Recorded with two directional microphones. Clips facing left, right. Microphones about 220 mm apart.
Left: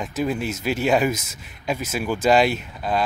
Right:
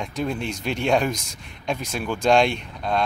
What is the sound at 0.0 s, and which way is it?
Speech, 5° left (ahead or behind).